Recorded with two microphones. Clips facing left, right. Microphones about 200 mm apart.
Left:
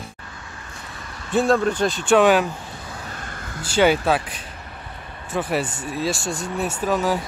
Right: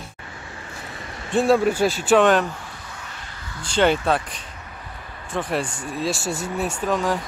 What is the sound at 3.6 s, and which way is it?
Speech, 5° left (ahead or behind).